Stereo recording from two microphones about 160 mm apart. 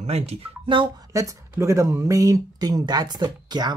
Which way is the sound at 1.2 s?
20° right (ahead or behind).